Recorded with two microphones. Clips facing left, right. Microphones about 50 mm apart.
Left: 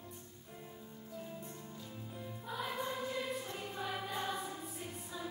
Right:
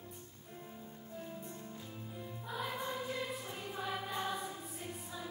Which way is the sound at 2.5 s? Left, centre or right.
Centre.